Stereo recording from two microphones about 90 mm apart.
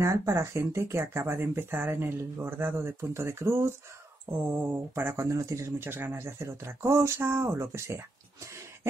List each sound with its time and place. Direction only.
0.0 s speech: 30° right (ahead or behind)